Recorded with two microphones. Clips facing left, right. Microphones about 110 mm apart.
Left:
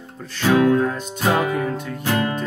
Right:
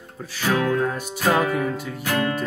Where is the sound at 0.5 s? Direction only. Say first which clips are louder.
Left 5 dB; 20° left (ahead or behind).